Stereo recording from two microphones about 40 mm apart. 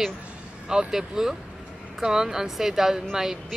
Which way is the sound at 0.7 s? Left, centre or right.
Centre.